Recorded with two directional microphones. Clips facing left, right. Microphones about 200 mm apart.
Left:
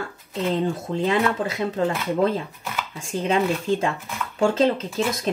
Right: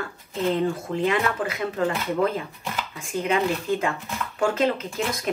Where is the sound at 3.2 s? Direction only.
30° left (ahead or behind).